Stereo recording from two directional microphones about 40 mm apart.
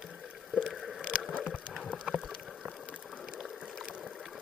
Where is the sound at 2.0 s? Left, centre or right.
Centre.